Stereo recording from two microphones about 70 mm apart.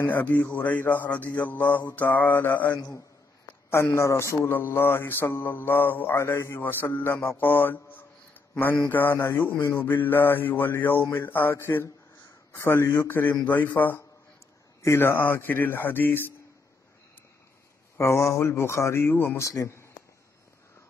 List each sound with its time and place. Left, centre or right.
0.0 s mantra: left
3.7 s speech: left
4.5 s mantra: left
17.9 s mantra: left
19.4 s speech: left